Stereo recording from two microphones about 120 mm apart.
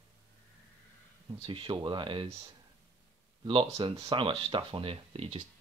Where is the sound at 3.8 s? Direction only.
50° right (ahead or behind).